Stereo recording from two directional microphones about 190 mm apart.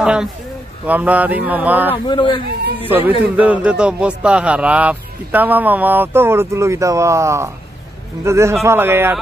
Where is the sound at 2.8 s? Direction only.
10° right (ahead or behind).